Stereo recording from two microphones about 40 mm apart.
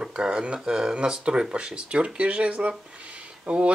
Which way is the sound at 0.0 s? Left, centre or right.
Right.